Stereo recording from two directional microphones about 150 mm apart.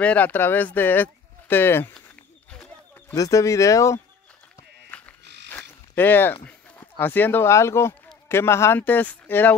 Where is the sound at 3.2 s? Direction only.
20° left (ahead or behind).